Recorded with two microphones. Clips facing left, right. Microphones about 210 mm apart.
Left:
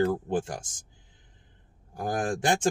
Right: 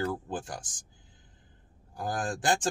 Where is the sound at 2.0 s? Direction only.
20° left (ahead or behind).